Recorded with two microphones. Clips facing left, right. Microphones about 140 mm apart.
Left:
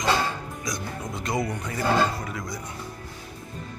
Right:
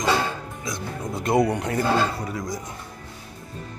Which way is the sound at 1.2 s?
65° right (ahead or behind).